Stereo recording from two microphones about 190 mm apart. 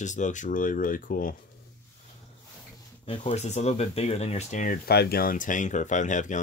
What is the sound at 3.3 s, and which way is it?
Speech, 35° left (ahead or behind).